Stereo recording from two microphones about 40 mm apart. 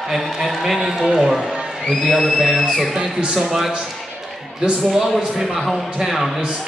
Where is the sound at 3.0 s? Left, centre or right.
Centre.